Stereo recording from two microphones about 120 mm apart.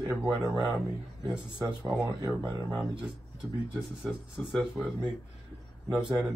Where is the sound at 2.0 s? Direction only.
25° right (ahead or behind).